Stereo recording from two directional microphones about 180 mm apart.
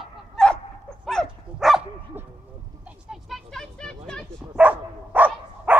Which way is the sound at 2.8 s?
Centre (ahead or behind).